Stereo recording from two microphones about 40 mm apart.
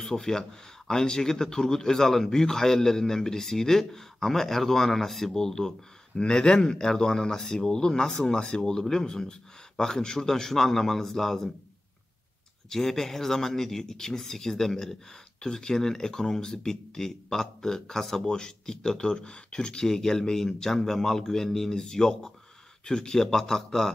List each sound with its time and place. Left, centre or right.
0.0 s speech: centre
12.6 s speech: centre
19.1 s speech: left